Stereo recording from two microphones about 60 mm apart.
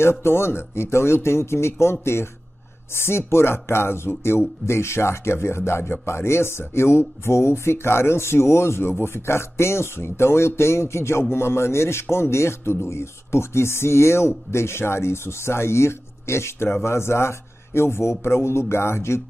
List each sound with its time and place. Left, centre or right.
0.0 s a man's voice: left